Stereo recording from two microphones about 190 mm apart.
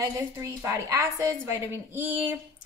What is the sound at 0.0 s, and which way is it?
A woman's voice, 15° right (ahead or behind).